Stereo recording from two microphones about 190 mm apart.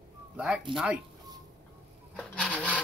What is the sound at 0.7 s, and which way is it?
Speech, 25° right (ahead or behind).